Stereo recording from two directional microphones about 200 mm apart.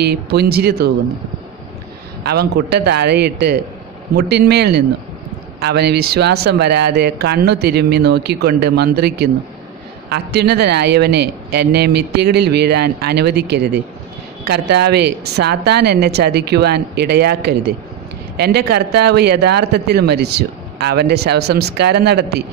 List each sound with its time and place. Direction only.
0.0 s speech: 50° right (ahead or behind)
2.2 s speech: 55° right (ahead or behind)